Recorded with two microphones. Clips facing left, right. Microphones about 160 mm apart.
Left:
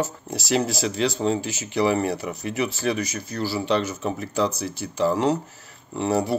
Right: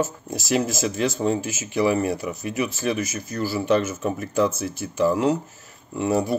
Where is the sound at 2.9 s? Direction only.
50° right (ahead or behind).